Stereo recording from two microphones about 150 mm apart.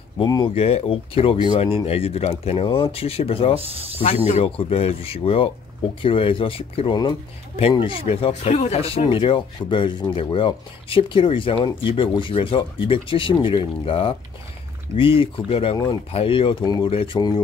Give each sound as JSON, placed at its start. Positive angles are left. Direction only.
{"t": 0.2, "sound": "speech", "side_deg": 30}
{"t": 0.6, "sound": "speech", "side_deg": 40}
{"t": 3.5, "sound": "speech", "side_deg": -40}
{"t": 4.6, "sound": "speech", "side_deg": 40}